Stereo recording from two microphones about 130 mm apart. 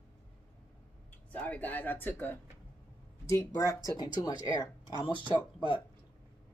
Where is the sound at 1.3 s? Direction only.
10° left (ahead or behind).